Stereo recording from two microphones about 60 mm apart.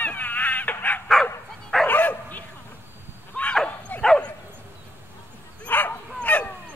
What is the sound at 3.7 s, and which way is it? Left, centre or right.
Bow-wow, left.